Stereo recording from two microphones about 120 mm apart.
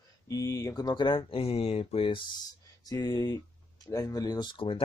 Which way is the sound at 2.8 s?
35° left (ahead or behind).